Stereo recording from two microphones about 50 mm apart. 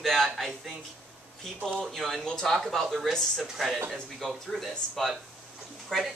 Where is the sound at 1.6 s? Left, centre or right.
Centre.